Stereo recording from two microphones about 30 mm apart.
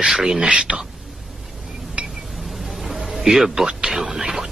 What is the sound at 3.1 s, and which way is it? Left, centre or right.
Speech, centre.